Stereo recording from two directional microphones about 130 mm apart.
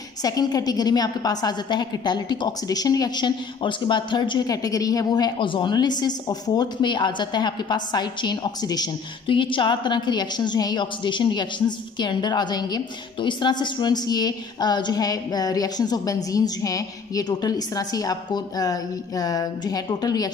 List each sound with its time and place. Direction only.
0.2 s a woman's voice: 30° left (ahead or behind)